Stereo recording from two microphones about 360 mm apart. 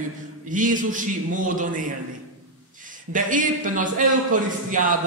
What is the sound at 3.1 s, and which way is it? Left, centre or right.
A man's voice, right.